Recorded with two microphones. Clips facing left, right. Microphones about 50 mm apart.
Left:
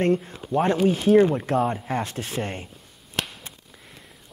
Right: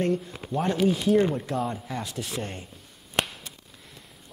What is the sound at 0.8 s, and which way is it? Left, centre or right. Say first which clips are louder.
Speech: left 4 dB; left.